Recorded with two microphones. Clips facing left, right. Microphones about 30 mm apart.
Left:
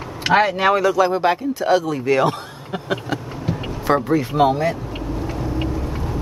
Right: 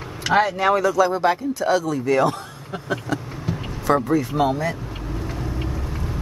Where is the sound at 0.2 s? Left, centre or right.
Left.